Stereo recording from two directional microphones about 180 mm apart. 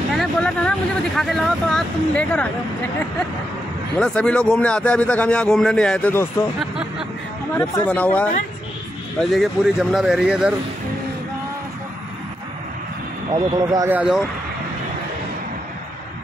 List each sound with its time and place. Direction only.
0.2 s speech: 5° left (ahead or behind)
4.0 s a man's voice: 5° left (ahead or behind)
13.3 s speech: 20° right (ahead or behind)
13.8 s speech: 5° right (ahead or behind)